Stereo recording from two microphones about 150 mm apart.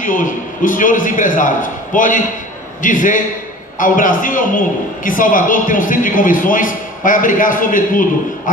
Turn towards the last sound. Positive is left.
turn(degrees=65)  # may be behind; listen again after turning